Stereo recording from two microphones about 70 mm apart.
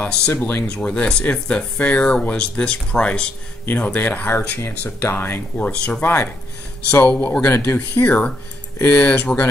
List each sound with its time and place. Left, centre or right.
0.0 s speech: centre
0.3 s speech: left
0.7 s speech: centre
3.6 s speech: left